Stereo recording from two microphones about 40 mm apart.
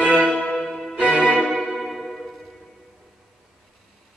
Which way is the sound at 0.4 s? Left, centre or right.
Centre.